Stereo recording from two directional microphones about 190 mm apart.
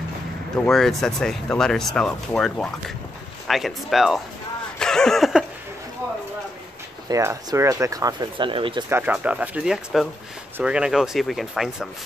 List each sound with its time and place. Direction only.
0.6 s speech: centre (ahead or behind)
4.7 s a sound: 5° left (ahead or behind)
7.1 s speech: 15° right (ahead or behind)
8.8 s speech: 10° right (ahead or behind)